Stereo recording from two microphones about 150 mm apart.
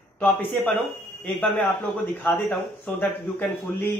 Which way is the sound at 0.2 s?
10° left (ahead or behind).